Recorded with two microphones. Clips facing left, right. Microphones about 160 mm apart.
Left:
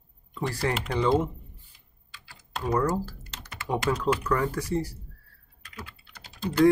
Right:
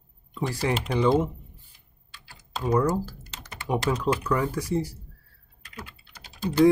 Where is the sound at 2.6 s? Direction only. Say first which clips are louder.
Right 2 dB; 15° right (ahead or behind).